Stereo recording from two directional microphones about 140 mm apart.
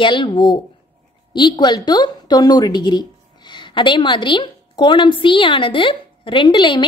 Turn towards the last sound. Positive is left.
turn(degrees=30)  # may be behind; listen again after turning